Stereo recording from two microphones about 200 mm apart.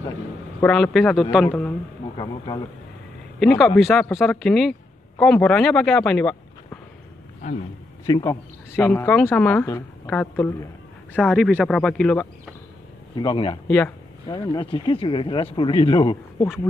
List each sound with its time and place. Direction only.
0.6 s speech: 5° left (ahead or behind)
2.1 s speech: 20° left (ahead or behind)
3.3 s speech: centre (ahead or behind)
8.0 s a woman's voice: 15° left (ahead or behind)
13.1 s speech: 20° left (ahead or behind)
13.7 s a woman's voice: 10° left (ahead or behind)
14.2 s speech: 20° left (ahead or behind)